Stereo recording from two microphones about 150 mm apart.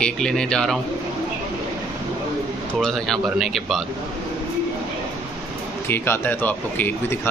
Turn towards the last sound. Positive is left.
turn(degrees=15)  # may be behind; listen again after turning